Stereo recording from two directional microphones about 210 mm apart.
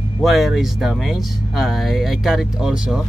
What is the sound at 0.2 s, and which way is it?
Speech, centre (ahead or behind).